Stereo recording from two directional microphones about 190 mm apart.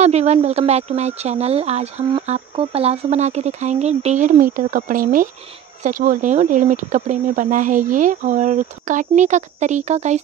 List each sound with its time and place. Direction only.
0.0 s speech: 35° right (ahead or behind)